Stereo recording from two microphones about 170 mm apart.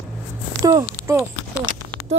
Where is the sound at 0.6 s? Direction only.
20° right (ahead or behind).